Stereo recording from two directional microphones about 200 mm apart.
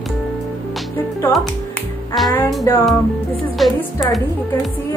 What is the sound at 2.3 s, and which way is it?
Speech, 15° left (ahead or behind).